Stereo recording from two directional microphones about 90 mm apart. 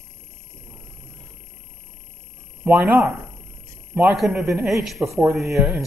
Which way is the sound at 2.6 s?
20° right (ahead or behind).